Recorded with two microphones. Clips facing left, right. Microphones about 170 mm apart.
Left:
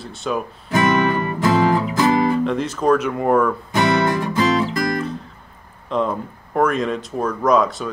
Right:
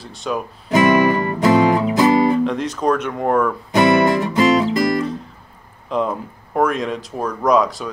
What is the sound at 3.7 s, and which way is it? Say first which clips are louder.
Music: right 5 dB; 20° right (ahead or behind).